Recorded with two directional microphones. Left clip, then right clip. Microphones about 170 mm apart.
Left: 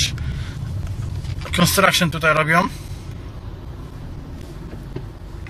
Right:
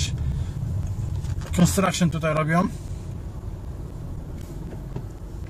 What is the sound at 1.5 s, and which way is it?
Speech, 15° right (ahead or behind).